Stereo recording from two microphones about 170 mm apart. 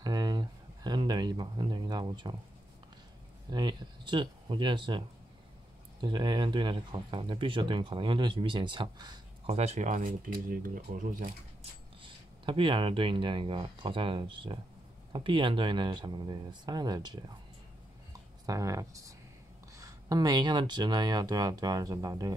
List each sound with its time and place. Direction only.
0.0 s a sound: 25° right (ahead or behind)
3.4 s speech: 25° right (ahead or behind)
9.5 s speech: 40° right (ahead or behind)
12.0 s speech: 30° right (ahead or behind)
18.4 s speech: 20° right (ahead or behind)